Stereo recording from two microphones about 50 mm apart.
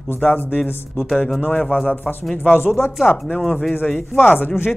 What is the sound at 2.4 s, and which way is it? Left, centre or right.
Speech, left.